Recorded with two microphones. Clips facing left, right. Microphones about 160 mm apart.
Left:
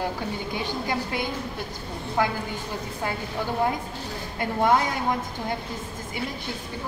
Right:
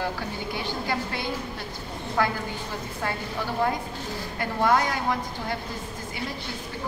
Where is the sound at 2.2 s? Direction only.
20° left (ahead or behind).